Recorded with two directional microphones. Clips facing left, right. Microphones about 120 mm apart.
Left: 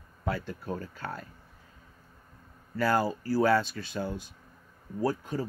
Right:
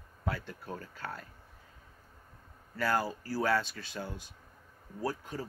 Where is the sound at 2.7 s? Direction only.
10° left (ahead or behind).